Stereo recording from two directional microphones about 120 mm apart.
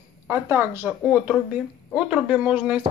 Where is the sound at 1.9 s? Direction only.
5° right (ahead or behind).